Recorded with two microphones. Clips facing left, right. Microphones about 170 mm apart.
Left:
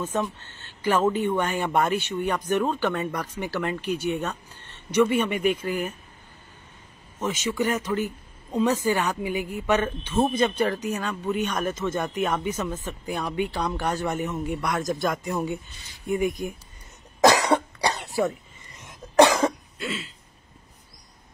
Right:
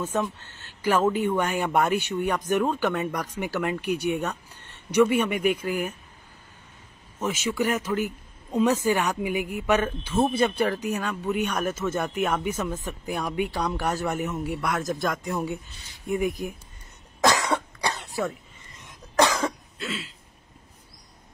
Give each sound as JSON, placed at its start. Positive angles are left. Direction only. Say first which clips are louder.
{"t": 0.1, "sound": "a man's voice", "louder": "even", "side_deg": -5}
{"t": 7.2, "sound": "a man's voice", "louder": "even", "side_deg": -10}
{"t": 17.2, "sound": "cough", "louder": "left 4 dB", "side_deg": 20}
{"t": 19.8, "sound": "a man's voice", "louder": "left 1 dB", "side_deg": 0}